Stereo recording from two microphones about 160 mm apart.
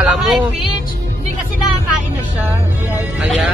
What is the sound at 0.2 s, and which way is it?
Speech, centre (ahead or behind).